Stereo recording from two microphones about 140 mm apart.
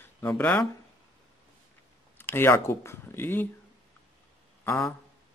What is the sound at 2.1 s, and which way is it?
Speech, 15° left (ahead or behind).